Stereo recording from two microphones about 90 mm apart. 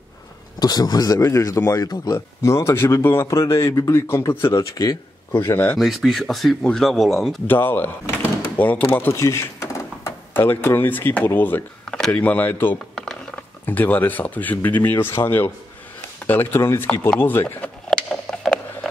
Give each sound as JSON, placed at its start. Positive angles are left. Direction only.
{"t": 0.6, "sound": "speech", "side_deg": 50}
{"t": 1.2, "sound": "speech", "side_deg": 35}
{"t": 2.1, "sound": "speech", "side_deg": 30}
{"t": 4.6, "sound": "speech", "side_deg": 45}
{"t": 5.5, "sound": "speech", "side_deg": 20}
{"t": 5.8, "sound": "speech", "side_deg": 0}
{"t": 7.4, "sound": "speech", "side_deg": 20}
{"t": 9.2, "sound": "a sound", "side_deg": 35}
{"t": 10.3, "sound": "speech", "side_deg": 25}
{"t": 11.8, "sound": "speech", "side_deg": 10}
{"t": 12.9, "sound": "mechanisms", "side_deg": 5}
{"t": 13.7, "sound": "speech", "side_deg": 20}
{"t": 17.8, "sound": "a sound", "side_deg": 5}